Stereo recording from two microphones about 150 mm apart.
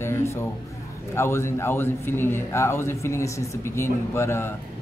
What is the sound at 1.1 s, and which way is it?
A man's voice, 15° left (ahead or behind).